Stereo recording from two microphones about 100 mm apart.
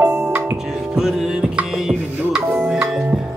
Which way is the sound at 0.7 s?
5° right (ahead or behind).